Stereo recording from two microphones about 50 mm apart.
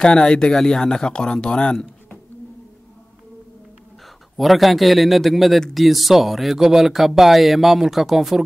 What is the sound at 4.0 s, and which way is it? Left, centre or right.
A man's voice, centre.